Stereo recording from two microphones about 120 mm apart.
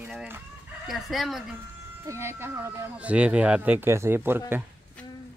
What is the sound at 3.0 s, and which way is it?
A man's voice, 10° right (ahead or behind).